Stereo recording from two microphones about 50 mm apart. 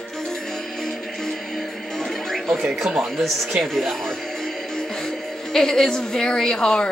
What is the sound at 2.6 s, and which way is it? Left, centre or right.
Speech, centre.